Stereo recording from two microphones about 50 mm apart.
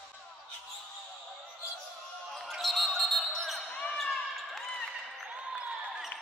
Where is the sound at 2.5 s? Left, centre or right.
Centre.